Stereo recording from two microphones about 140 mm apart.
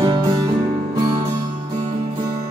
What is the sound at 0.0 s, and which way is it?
Music, 30° right (ahead or behind).